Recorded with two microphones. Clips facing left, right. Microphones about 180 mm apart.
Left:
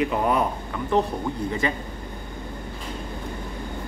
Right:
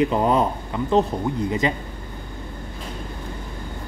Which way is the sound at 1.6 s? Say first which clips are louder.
Right 2 dB; 20° right (ahead or behind).